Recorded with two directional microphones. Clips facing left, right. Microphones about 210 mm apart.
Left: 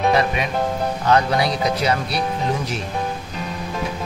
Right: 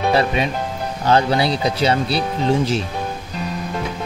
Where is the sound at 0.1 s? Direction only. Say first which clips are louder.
Right 1 dB; 30° right (ahead or behind).